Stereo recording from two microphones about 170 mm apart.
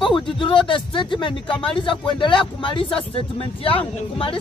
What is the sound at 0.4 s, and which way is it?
Speech, 30° left (ahead or behind).